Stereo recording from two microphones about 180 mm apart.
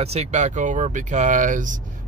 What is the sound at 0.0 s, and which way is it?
Speech, 35° right (ahead or behind).